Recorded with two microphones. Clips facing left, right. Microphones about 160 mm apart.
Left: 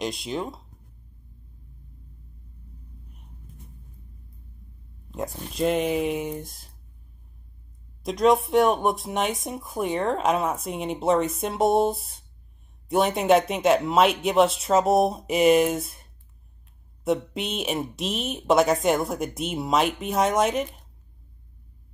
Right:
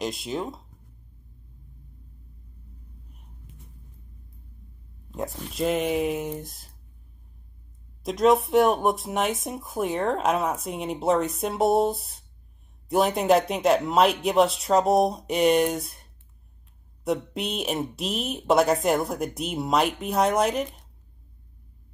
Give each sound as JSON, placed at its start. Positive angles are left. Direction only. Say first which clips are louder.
{"t": 0.0, "sound": "speech", "louder": "even", "side_deg": 0}
{"t": 3.5, "sound": "a sound", "louder": "left 3 dB", "side_deg": -90}
{"t": 5.1, "sound": "speech", "louder": "even", "side_deg": 0}
{"t": 8.0, "sound": "speech", "louder": "even", "side_deg": 0}